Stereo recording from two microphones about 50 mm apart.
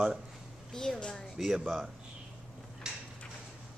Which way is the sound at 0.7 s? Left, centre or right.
Centre.